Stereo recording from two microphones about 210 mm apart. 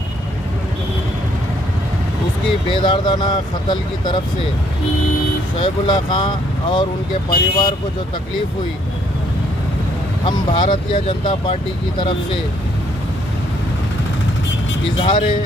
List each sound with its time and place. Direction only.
2.7 s speech: 20° left (ahead or behind)
5.6 s speech: 20° left (ahead or behind)
10.2 s speech: 25° left (ahead or behind)
15.0 s speech: 25° left (ahead or behind)